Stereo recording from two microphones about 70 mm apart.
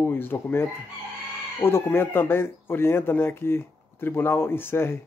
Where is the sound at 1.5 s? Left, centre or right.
Left.